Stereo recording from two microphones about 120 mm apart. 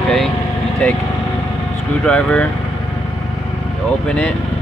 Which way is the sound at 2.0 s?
10° left (ahead or behind).